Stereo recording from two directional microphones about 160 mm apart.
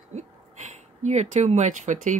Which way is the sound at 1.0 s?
45° right (ahead or behind).